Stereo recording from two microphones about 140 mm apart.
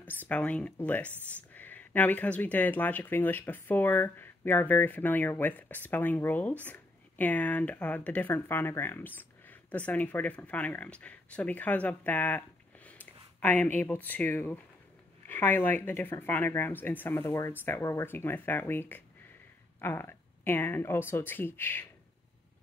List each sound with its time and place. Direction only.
0.3 s speech: 10° left (ahead or behind)